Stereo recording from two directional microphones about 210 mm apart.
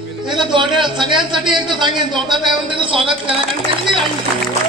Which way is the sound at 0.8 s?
20° right (ahead or behind).